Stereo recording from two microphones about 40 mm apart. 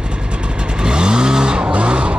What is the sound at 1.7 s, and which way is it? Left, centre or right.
Music, right.